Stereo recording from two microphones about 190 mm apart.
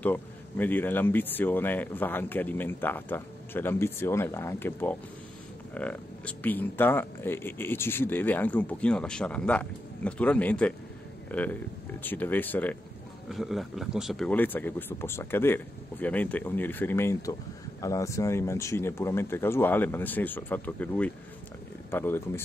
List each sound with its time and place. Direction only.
0.0 s speech: 10° left (ahead or behind)